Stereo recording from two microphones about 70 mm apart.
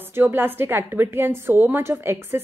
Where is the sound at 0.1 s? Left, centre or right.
Right.